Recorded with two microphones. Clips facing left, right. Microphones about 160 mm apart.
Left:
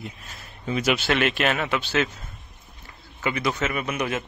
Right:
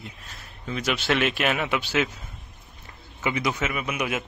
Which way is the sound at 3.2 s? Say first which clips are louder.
Left 1 dB; 20° right (ahead or behind).